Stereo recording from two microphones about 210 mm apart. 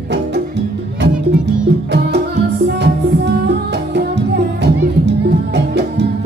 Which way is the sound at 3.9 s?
55° right (ahead or behind).